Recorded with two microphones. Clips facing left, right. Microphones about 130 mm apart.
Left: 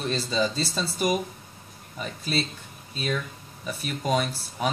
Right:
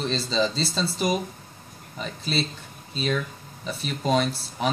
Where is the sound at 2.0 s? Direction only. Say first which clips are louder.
Right 1 dB; 15° left (ahead or behind).